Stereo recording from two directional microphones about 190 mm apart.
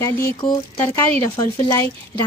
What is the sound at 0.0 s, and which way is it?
Speech, 15° left (ahead or behind).